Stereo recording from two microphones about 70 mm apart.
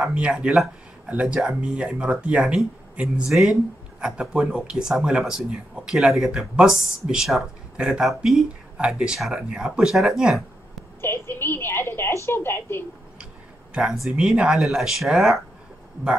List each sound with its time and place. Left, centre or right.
0.1 s speech: centre
11.0 s a woman's voice: left
13.9 s speech: centre